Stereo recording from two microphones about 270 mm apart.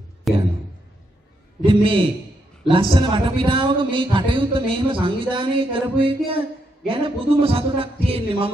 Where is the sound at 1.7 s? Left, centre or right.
Centre.